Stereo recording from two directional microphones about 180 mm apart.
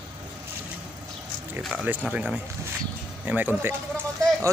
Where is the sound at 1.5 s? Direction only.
10° right (ahead or behind).